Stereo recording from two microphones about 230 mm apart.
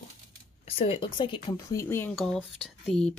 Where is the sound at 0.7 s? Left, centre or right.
Left.